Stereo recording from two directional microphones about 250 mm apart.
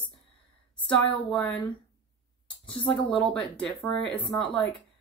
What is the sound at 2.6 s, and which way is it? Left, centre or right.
Speech, centre.